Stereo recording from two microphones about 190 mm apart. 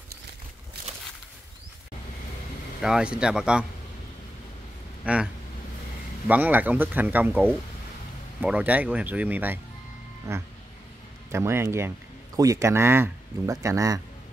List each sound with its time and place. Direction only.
2.8 s speech: 5° right (ahead or behind)
5.0 s speech: 5° right (ahead or behind)